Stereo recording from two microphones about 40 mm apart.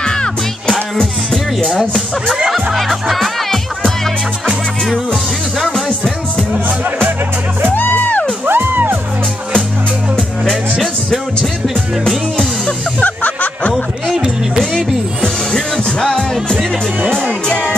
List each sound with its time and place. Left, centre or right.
0.0 s music: left
1.8 s speech: centre
2.5 s music: centre
7.7 s music: left
8.5 s music: right
13.0 s music: left
14.6 s speech: centre
15.2 s music: centre
17.5 s music: left